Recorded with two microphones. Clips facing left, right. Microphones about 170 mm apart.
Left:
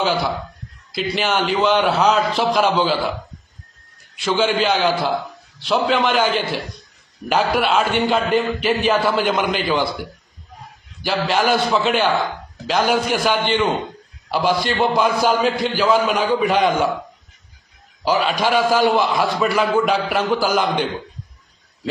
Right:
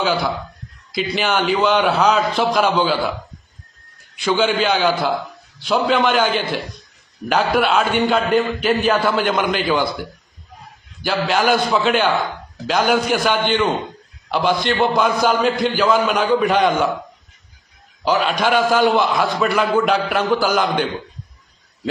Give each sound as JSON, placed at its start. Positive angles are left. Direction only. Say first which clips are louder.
{"t": 0.0, "sound": "a man's voice", "louder": "even", "side_deg": 5}
{"t": 4.2, "sound": "a man's voice", "louder": "right 1 dB", "side_deg": 0}
{"t": 11.0, "sound": "a man's voice", "louder": "right 1 dB", "side_deg": 0}
{"t": 18.0, "sound": "a man's voice", "louder": "right 1 dB", "side_deg": 5}